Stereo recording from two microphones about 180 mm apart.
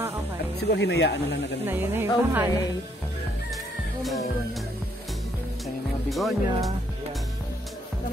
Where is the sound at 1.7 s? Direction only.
10° right (ahead or behind).